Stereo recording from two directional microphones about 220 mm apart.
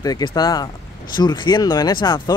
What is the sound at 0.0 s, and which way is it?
Speech, 20° left (ahead or behind).